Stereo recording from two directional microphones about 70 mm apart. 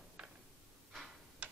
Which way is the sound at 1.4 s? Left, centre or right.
Centre.